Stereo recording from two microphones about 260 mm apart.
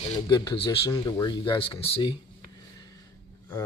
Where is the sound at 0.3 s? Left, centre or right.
Centre.